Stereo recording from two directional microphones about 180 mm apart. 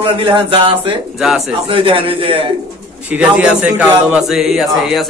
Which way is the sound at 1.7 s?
30° right (ahead or behind).